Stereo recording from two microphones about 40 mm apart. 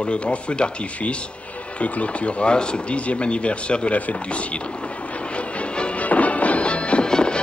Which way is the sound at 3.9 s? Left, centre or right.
Left.